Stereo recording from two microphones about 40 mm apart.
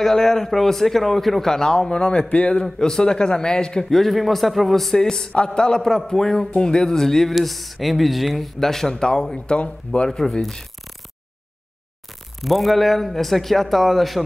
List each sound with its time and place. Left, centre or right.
0.0 s a man's voice: centre; by 2.6 s left
2.6 s a man's voice: centre
3.9 s a man's voice: centre
5.3 s a man's voice: left
12.4 s a man's voice: centre